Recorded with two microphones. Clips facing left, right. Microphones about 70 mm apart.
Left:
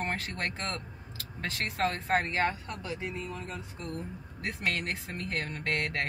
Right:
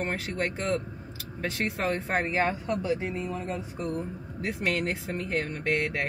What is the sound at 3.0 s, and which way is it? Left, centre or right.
Speech, right.